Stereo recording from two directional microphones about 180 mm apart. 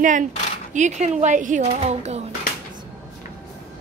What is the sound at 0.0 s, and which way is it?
Speech, 45° right (ahead or behind).